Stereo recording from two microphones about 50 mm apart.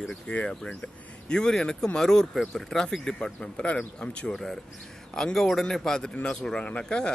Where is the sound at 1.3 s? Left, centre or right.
Centre.